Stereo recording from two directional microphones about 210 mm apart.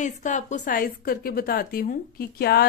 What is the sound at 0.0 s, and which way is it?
A woman's voice, 35° left (ahead or behind).